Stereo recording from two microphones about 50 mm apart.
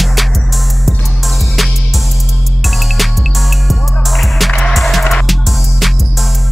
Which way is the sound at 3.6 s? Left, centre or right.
Centre.